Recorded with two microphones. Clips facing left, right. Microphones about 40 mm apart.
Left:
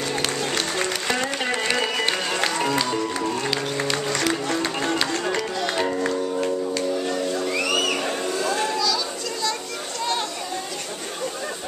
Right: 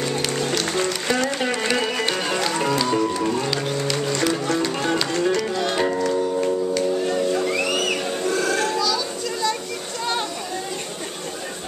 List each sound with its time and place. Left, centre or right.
0.2 s music: centre
3.1 s speech: centre
4.9 s music: centre
7.3 s music: centre
8.7 s children playing: centre